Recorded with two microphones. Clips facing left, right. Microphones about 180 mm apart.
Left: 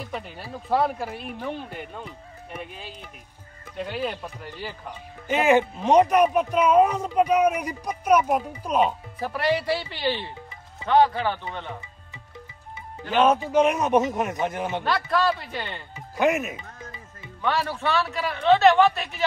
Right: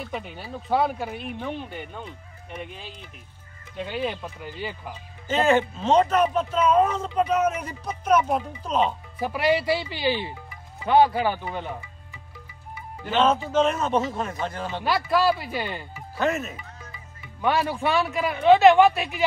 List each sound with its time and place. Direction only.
0.0 s speech: centre (ahead or behind)
5.3 s speech: 15° left (ahead or behind)
9.2 s a man's voice: 5° right (ahead or behind)
13.1 s speech: 15° left (ahead or behind)
14.8 s speech: 5° right (ahead or behind)
15.9 s speech: 15° left (ahead or behind)
17.4 s a man's voice: 15° right (ahead or behind)